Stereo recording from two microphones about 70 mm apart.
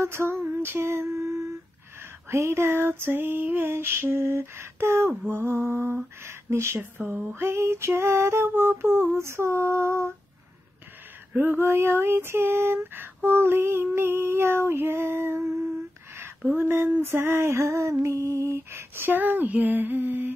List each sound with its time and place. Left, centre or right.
0.0 s a sound: right
2.2 s female singing: right
11.3 s female singing: right